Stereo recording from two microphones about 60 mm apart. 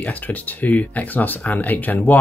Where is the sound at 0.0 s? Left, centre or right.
Left.